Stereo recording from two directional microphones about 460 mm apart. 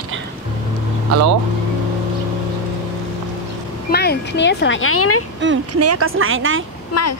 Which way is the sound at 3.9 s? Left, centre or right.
Left.